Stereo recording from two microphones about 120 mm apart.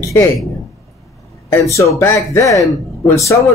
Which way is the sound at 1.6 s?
25° left (ahead or behind).